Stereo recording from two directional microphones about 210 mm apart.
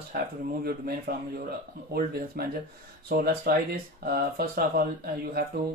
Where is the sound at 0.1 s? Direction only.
45° right (ahead or behind).